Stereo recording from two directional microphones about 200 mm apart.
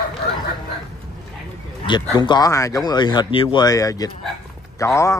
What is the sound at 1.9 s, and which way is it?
Speech, 25° left (ahead or behind).